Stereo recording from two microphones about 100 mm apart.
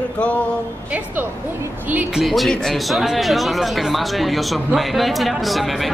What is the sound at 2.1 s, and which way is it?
Speech, centre (ahead or behind).